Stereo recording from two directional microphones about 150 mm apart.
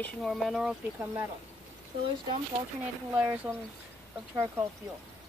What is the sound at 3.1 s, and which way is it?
Speech, 10° right (ahead or behind).